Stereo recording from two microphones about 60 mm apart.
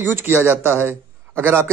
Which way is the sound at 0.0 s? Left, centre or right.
Right.